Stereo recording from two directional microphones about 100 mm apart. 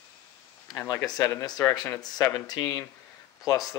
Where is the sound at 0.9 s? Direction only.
35° left (ahead or behind).